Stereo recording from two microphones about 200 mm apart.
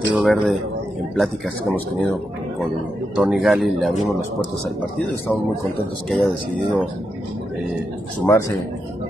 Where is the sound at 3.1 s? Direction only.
Centre (ahead or behind).